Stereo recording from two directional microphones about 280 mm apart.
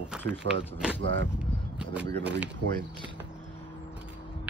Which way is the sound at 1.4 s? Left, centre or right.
Centre.